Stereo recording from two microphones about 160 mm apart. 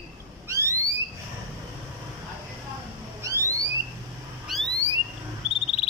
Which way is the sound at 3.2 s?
20° right (ahead or behind).